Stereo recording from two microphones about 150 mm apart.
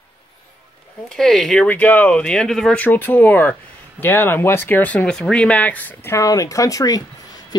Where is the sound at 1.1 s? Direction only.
Centre (ahead or behind).